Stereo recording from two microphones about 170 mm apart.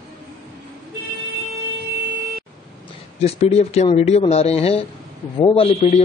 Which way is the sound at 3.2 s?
40° left (ahead or behind).